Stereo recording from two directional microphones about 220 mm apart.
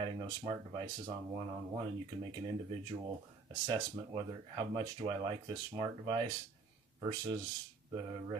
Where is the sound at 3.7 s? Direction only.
20° right (ahead or behind).